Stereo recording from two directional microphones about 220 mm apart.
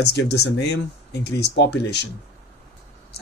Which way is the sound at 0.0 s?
50° left (ahead or behind).